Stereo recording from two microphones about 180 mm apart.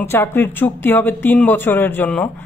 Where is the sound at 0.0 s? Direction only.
15° left (ahead or behind).